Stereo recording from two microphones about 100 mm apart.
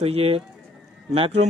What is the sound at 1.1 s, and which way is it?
Speech, 75° right (ahead or behind).